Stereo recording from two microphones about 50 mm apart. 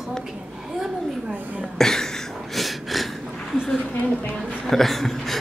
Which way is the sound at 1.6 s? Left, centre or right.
Centre.